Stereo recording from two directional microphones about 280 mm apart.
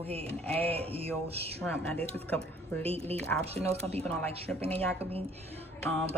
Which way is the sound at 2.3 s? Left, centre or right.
Centre.